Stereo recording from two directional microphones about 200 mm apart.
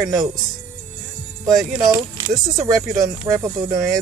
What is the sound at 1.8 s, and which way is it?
Speech, 20° right (ahead or behind).